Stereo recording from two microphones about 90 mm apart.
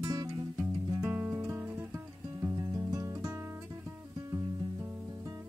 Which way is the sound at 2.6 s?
40° right (ahead or behind).